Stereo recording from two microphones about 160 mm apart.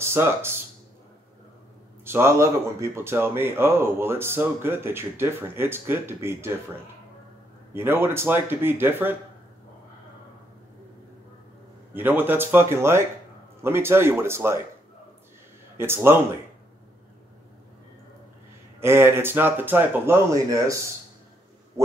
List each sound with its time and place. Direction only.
0.0 s speech: 15° right (ahead or behind)
2.0 s speech: 15° right (ahead or behind)
7.7 s speech: 15° right (ahead or behind)
11.9 s speech: 10° right (ahead or behind)
15.8 s speech: 15° right (ahead or behind)
18.8 s speech: 15° right (ahead or behind)